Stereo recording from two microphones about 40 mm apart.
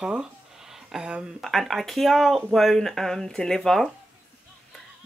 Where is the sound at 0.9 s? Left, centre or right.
Centre.